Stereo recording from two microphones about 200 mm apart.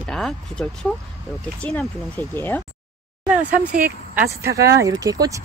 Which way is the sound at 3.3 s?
5° right (ahead or behind).